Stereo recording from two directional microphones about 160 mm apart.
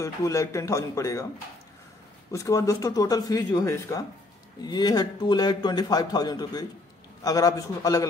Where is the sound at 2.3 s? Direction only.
20° left (ahead or behind).